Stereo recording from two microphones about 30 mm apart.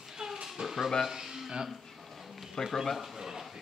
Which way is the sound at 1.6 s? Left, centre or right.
Centre.